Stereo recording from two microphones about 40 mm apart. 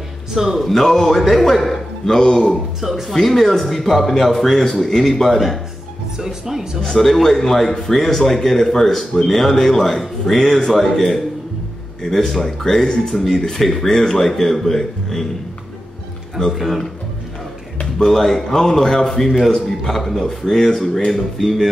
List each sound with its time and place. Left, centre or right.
0.3 s speech: centre
0.7 s speech: centre
2.1 s speech: centre
2.8 s speech: centre
6.1 s speech: centre
6.8 s speech: centre
13.1 s speech: centre
16.5 s speech: centre
17.9 s speech: centre
21.1 s speech: centre